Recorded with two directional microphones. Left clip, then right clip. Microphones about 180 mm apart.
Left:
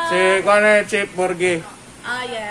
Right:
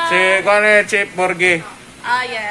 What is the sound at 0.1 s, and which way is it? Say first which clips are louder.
Speech: right 1 dB; 10° right (ahead or behind).